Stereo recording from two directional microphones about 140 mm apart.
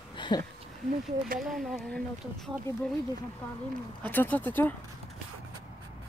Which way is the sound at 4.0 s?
10° left (ahead or behind).